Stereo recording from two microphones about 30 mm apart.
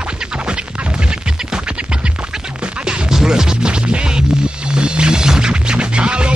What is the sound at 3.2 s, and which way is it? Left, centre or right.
Scratch, right.